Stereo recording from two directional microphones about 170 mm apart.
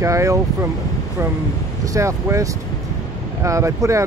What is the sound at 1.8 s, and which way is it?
Speech, 20° right (ahead or behind).